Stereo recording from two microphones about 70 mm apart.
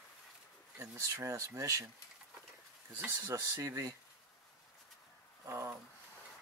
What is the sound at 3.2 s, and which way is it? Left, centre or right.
Speech, right.